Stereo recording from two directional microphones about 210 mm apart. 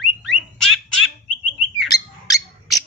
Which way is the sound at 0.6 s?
Centre (ahead or behind).